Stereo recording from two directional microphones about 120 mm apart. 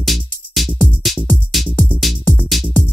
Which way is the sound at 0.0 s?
Centre (ahead or behind).